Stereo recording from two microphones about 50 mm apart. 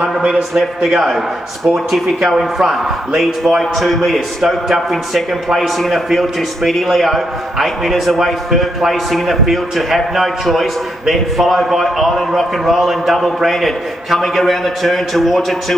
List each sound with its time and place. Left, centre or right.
0.0 s a man's voice: centre